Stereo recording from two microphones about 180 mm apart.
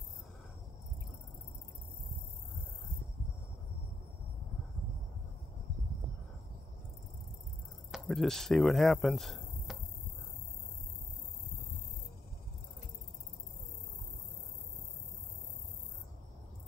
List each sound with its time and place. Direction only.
7.9 s speech: centre (ahead or behind)